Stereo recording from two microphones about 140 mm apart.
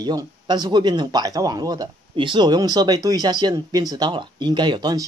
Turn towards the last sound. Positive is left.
turn(degrees=-30)  # may be behind; listen again after turning